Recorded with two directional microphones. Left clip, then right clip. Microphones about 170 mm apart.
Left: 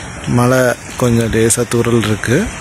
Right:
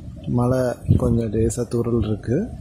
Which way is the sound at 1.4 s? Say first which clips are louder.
Left 9 dB; 5° right (ahead or behind).